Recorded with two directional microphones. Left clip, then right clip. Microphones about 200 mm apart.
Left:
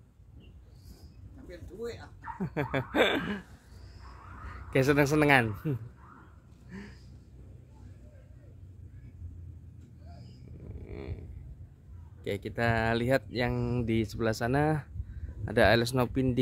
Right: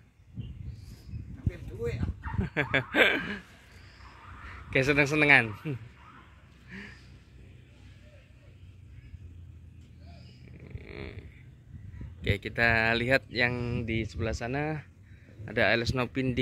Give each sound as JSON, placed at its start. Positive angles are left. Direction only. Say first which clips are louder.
{"t": 2.4, "sound": "speech", "louder": "right 5 dB", "side_deg": 10}
{"t": 4.6, "sound": "speech", "louder": "even", "side_deg": 20}
{"t": 10.8, "sound": "a sound", "louder": "right 1 dB", "side_deg": 10}
{"t": 12.2, "sound": "speech", "louder": "right 4 dB", "side_deg": 10}
{"t": 13.7, "sound": "speech", "louder": "left 2 dB", "side_deg": 30}